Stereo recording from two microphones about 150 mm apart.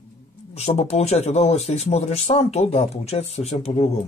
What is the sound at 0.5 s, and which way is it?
Speech, 45° left (ahead or behind).